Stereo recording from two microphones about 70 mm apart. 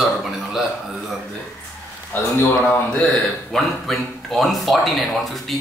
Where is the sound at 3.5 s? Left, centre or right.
Centre.